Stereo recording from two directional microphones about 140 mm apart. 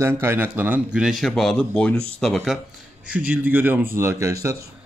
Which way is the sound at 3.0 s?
10° right (ahead or behind).